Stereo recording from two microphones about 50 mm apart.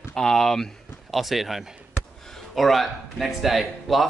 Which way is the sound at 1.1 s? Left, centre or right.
Centre.